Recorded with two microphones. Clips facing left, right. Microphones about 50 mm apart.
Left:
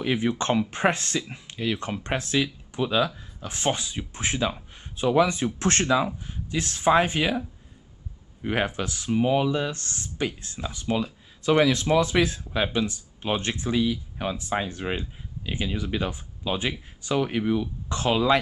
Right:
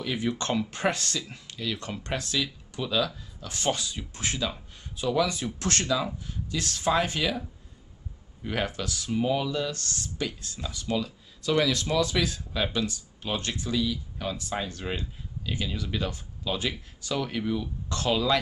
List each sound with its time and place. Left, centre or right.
0.0 s speech: left